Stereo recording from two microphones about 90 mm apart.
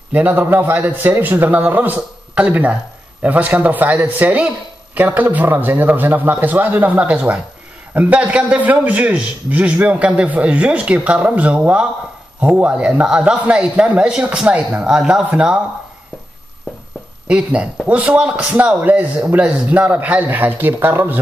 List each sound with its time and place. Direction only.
0.1 s a man's voice: 20° right (ahead or behind)
17.3 s a man's voice: 10° right (ahead or behind)